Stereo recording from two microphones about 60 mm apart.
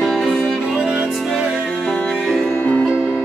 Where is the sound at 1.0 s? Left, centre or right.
Centre.